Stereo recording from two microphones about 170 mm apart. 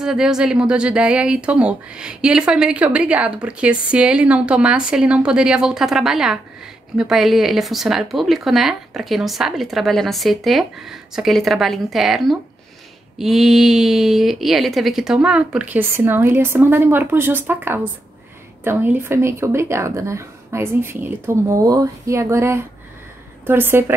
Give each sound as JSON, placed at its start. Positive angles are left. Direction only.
{"t": 0.0, "sound": "a woman's voice", "side_deg": -5}